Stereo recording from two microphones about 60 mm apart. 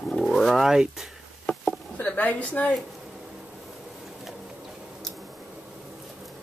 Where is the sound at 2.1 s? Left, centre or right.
Left.